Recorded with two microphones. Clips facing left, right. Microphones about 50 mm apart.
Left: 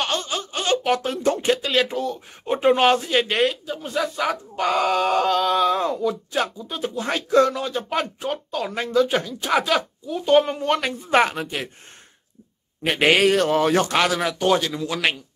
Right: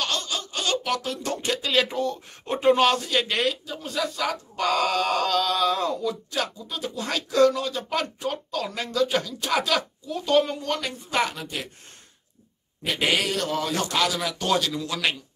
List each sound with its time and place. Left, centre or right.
0.0 s a sound: left
1.6 s speech: centre; by 3.3 s left
3.3 s speech: centre
4.6 s speech: centre; by 11.7 s left
12.8 s a man's voice: left
14.4 s speech: left